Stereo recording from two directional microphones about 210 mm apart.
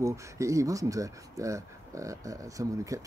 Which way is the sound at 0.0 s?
15° right (ahead or behind).